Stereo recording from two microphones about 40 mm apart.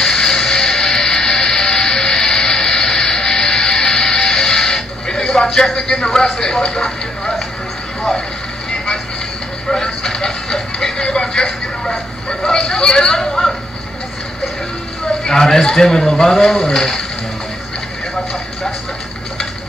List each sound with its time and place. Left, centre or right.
0.0 s music: centre
9.7 s music: centre
15.2 s speech: centre